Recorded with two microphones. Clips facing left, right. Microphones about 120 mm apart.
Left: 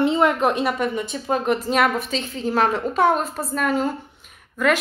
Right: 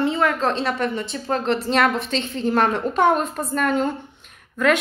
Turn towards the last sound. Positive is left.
turn(degrees=5)  # may be behind; listen again after turning